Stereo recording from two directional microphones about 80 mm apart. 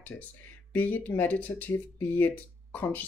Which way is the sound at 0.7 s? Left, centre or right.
Left.